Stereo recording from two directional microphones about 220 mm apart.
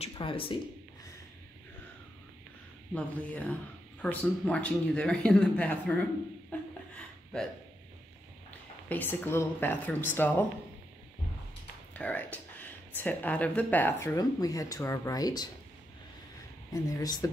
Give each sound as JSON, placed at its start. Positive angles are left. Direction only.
{"t": 0.0, "sound": "speech", "side_deg": 25}
{"t": 2.9, "sound": "speech", "side_deg": 5}
{"t": 6.5, "sound": "a sound", "side_deg": 10}
{"t": 8.5, "sound": "speech", "side_deg": 5}
{"t": 11.9, "sound": "speech", "side_deg": 5}
{"t": 16.7, "sound": "speech", "side_deg": 15}